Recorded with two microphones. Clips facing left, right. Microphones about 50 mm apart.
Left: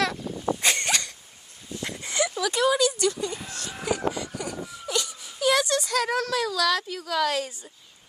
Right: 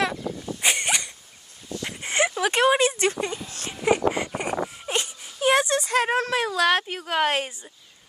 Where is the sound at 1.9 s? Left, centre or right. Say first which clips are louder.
Right 4 dB; right.